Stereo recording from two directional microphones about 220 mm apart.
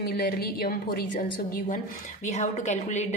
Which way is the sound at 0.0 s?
45° left (ahead or behind).